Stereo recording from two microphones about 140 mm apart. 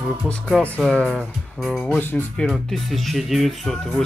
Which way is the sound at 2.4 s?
Centre (ahead or behind).